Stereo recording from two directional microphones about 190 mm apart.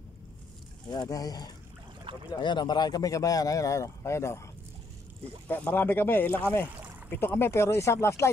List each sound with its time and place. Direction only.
0.8 s speech: 20° left (ahead or behind)
2.1 s speech: 25° right (ahead or behind)
2.4 s speech: 25° left (ahead or behind)
5.5 s speech: 10° left (ahead or behind)